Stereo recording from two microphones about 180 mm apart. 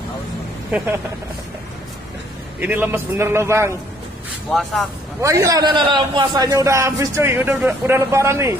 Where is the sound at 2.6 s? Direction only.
10° right (ahead or behind).